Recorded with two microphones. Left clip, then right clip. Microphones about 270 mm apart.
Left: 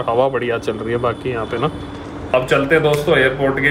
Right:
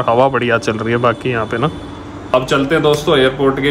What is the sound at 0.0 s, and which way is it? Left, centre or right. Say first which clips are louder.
Speech: right 4 dB; right.